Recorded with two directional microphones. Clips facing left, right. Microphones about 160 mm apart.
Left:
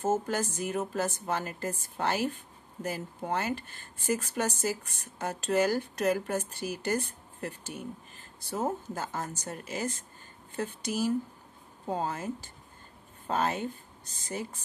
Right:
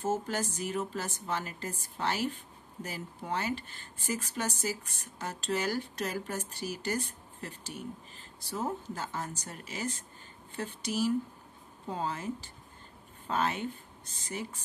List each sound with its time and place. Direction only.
0.0 s speech: 50° left (ahead or behind)